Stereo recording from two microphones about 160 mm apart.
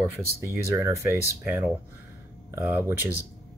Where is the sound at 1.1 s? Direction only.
10° right (ahead or behind).